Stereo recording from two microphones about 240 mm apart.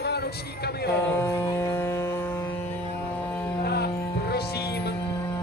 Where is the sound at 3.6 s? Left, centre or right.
Left.